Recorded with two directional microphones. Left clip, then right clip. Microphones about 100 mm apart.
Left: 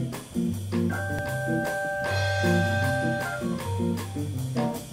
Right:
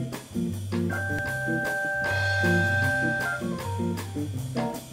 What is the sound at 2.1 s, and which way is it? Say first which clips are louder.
Music: right 1 dB; 25° right (ahead or behind).